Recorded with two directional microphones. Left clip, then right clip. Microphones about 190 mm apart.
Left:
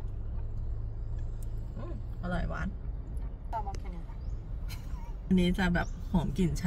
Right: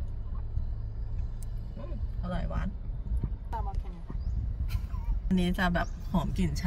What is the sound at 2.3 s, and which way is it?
Speech, 20° left (ahead or behind).